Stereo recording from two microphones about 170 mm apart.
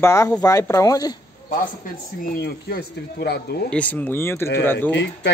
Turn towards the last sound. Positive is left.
turn(degrees=90)